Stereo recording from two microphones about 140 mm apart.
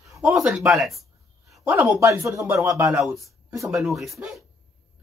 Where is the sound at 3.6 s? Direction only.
Centre (ahead or behind).